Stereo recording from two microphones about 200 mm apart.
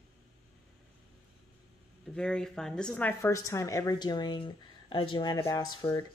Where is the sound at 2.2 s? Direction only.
5° left (ahead or behind).